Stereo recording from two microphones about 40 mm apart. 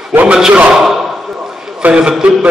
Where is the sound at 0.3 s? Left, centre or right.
Right.